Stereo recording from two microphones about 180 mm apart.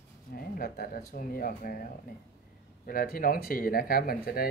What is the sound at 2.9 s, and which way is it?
Speech, 50° left (ahead or behind).